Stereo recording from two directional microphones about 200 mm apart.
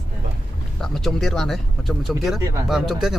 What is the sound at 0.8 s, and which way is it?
Speech, centre (ahead or behind).